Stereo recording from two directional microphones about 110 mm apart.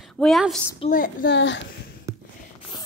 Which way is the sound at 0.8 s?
60° left (ahead or behind).